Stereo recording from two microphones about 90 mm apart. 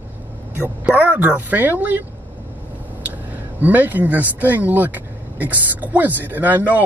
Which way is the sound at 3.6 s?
20° right (ahead or behind).